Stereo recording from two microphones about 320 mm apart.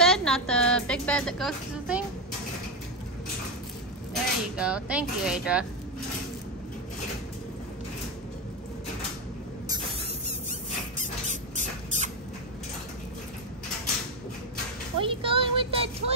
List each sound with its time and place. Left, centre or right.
0.0 s music: centre
4.1 s speech: centre
11.0 s rodents: right
15.0 s music: centre